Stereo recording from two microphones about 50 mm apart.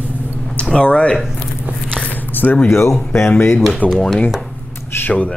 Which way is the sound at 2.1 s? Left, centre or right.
Left.